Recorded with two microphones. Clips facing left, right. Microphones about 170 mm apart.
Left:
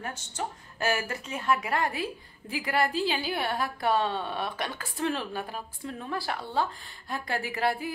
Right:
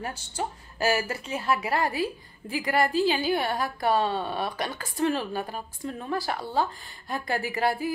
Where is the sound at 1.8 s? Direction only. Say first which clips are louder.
Right 3 dB; centre (ahead or behind).